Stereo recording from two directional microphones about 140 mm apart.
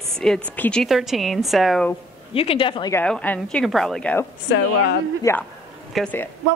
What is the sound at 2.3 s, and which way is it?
Speech, 40° left (ahead or behind).